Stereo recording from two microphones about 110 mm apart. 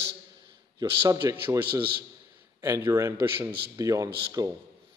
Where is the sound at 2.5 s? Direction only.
30° right (ahead or behind).